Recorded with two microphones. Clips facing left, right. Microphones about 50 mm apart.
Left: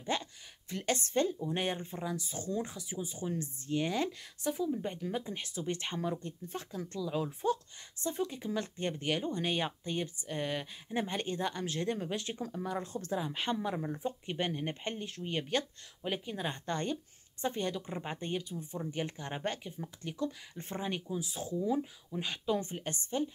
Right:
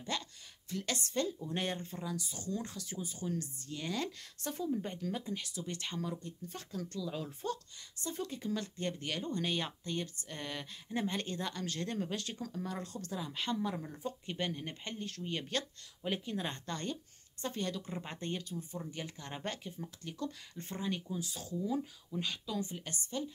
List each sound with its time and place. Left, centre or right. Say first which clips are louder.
0.0 s a sound: left 4 dB; left
1.4 s speech: left 3 dB; centre
4.5 s speech: left 3 dB; centre
5.0 s speech: left 2 dB; left
7.0 s speech: left 7 dB; centre
16.6 s speech: left 5 dB; left
18.5 s speech: left 3 dB; left
22.5 s a woman's voice: left 6 dB; left